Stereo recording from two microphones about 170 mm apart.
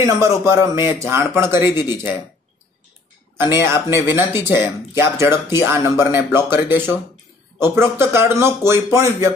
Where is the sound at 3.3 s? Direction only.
15° right (ahead or behind).